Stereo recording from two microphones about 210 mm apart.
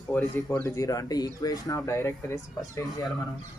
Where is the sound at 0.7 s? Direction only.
15° left (ahead or behind).